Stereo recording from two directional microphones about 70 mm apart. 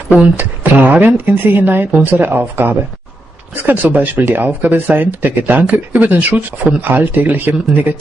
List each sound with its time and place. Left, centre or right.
0.4 s speech: right